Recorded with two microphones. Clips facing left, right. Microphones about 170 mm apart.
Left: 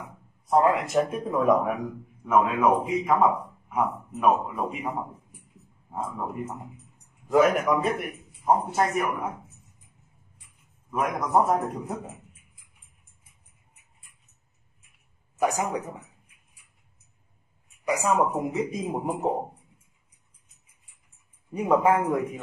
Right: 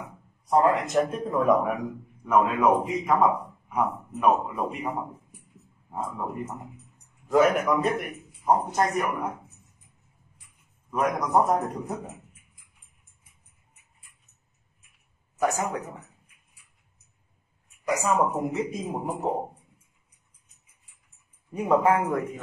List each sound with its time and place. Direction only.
0.5 s a man's voice: centre (ahead or behind)
7.5 s a man's voice: centre (ahead or behind)
10.9 s a man's voice: centre (ahead or behind)
15.3 s speech: 15° left (ahead or behind)
18.4 s speech: 10° left (ahead or behind)
21.6 s speech: 15° left (ahead or behind)